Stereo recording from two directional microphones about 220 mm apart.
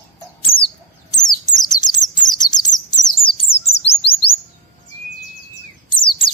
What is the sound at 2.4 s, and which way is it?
Chirp, 20° left (ahead or behind).